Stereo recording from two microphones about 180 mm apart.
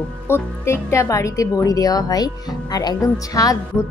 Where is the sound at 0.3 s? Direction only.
15° left (ahead or behind).